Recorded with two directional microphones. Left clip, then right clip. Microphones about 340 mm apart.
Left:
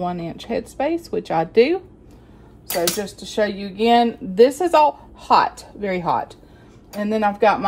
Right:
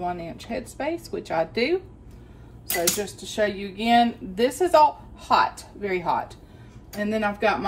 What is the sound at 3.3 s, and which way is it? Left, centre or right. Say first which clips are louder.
Speech: left 4 dB; left.